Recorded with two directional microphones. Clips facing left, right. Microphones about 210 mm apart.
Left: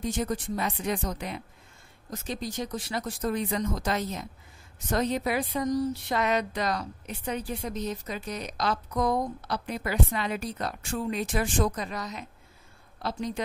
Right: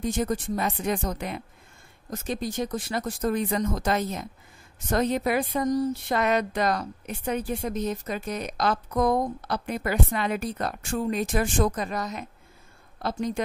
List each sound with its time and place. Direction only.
0.0 s speech: 50° right (ahead or behind)